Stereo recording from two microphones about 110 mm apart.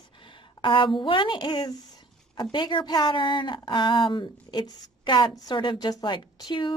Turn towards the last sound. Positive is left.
turn(degrees=45)  # may be behind; listen again after turning